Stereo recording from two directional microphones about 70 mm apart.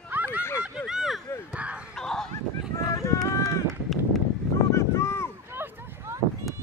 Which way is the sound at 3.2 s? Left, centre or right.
Left.